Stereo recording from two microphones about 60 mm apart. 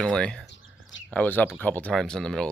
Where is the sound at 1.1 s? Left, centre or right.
Left.